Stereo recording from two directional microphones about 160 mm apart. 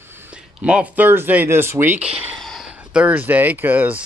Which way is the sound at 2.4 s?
Centre (ahead or behind).